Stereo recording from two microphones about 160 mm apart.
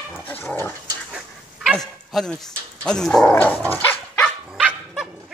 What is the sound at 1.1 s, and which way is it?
Dog, centre (ahead or behind).